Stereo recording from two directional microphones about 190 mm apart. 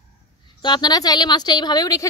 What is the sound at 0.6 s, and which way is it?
A woman's voice, 20° left (ahead or behind).